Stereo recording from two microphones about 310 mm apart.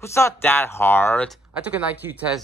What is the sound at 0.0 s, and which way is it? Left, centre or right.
Speech, centre.